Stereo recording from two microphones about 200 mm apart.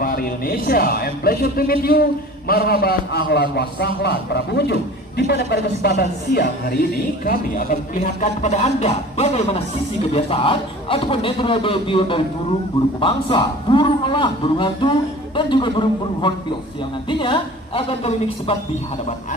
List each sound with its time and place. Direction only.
0.0 s a man's voice: 45° left (ahead or behind); by 18.6 s 30° left (ahead or behind)